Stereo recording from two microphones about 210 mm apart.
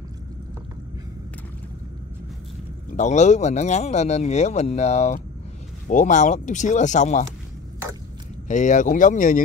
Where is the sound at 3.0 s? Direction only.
35° left (ahead or behind).